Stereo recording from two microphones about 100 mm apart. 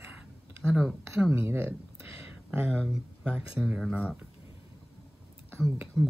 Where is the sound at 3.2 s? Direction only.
10° right (ahead or behind).